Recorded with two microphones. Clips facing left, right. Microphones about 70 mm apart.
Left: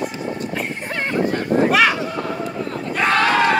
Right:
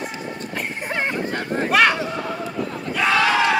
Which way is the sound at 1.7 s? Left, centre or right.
Centre.